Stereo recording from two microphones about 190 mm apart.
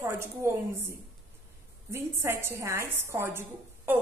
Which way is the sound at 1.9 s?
15° right (ahead or behind).